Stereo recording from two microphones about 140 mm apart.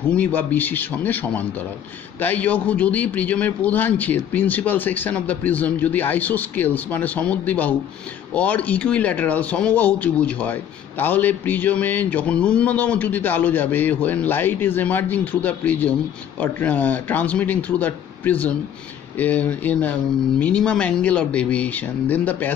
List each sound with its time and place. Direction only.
0.1 s speech: 10° left (ahead or behind)